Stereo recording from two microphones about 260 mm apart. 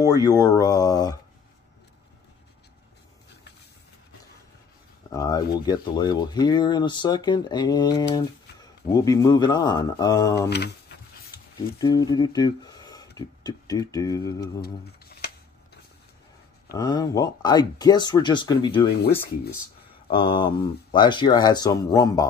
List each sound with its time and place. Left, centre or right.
0.1 s speech: centre
5.1 s speech: centre
11.8 s speech: centre
16.7 s speech: centre
20.1 s speech: centre